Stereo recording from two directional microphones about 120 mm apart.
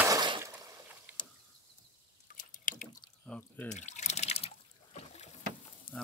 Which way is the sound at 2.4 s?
90° left.